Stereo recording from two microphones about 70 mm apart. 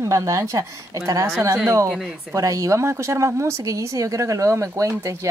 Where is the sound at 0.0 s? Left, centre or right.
Right.